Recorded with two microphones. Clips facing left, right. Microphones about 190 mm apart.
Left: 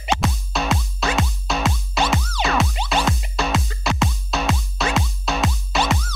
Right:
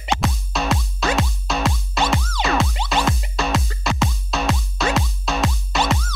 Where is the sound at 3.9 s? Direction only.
Centre (ahead or behind).